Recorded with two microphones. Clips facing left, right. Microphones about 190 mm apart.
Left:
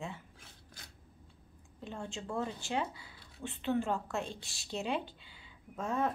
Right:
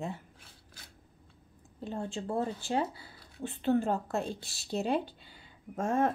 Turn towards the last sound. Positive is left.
turn(degrees=-50)  # may be behind; listen again after turning